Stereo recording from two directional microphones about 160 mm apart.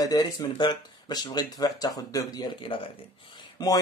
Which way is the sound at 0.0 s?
25° left (ahead or behind).